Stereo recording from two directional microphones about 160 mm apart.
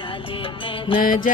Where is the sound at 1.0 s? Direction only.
60° left (ahead or behind).